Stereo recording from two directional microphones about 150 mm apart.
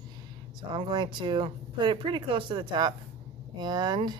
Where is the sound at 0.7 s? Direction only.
30° right (ahead or behind).